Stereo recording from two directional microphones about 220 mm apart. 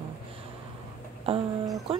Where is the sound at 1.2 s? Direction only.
25° right (ahead or behind).